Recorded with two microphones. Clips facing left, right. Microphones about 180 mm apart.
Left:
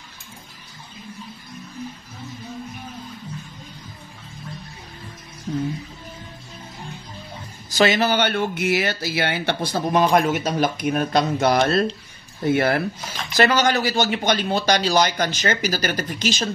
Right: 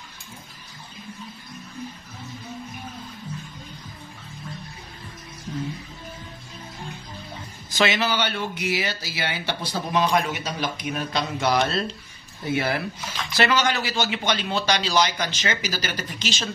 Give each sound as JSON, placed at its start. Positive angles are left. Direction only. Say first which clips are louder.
{"t": 7.7, "sound": "speech", "louder": "left 5 dB", "side_deg": 40}